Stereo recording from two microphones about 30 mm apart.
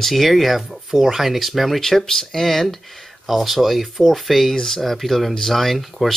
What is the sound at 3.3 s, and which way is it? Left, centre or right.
Speech, centre.